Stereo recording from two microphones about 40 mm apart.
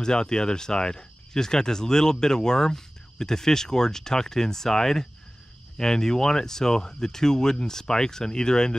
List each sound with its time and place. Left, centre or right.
0.0 s speech: centre